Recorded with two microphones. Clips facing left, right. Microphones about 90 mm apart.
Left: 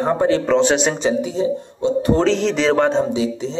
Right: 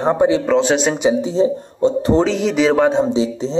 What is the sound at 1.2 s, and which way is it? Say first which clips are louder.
Speech: right 3 dB; 30° right (ahead or behind).